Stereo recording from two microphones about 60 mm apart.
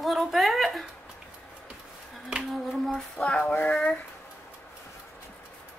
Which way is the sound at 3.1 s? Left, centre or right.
Centre.